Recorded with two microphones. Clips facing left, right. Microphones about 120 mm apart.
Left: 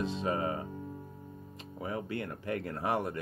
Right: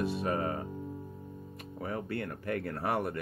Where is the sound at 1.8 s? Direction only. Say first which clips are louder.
Even; 15° left (ahead or behind).